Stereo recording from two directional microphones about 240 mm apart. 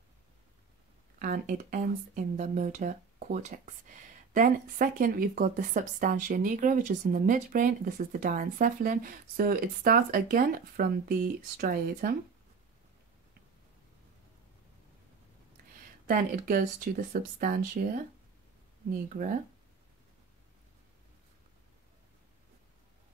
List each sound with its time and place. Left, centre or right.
1.2 s speech: right
16.1 s speech: right
19.1 s speech: right